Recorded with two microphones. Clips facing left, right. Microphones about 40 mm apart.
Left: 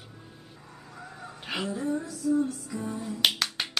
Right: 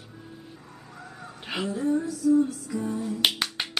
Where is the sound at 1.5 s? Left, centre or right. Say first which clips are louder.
Right 4 dB; centre.